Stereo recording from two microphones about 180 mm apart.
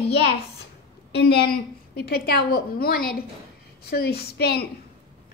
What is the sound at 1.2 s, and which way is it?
A woman's voice, 60° left (ahead or behind).